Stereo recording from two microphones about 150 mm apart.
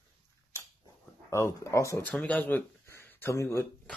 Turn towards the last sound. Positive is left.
turn(degrees=15)  # may be behind; listen again after turning